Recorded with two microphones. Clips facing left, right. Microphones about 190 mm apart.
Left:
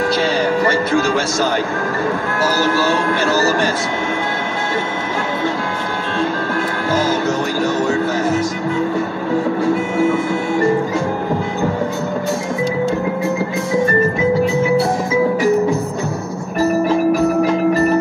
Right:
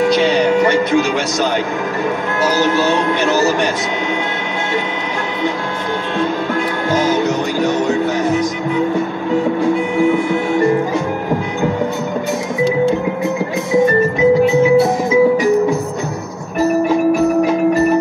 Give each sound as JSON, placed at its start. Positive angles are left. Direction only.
{"t": 0.0, "sound": "music", "side_deg": -20}
{"t": 2.6, "sound": "speech", "side_deg": -20}
{"t": 6.9, "sound": "music", "side_deg": -20}
{"t": 9.9, "sound": "music", "side_deg": -15}